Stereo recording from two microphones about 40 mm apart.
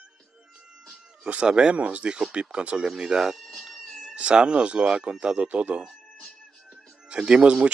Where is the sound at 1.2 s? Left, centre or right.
Right.